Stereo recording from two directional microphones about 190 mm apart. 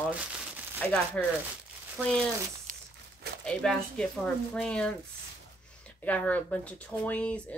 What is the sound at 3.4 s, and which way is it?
Speech, 5° left (ahead or behind).